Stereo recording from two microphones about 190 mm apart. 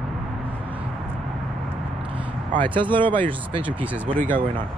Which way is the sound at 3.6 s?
5° right (ahead or behind).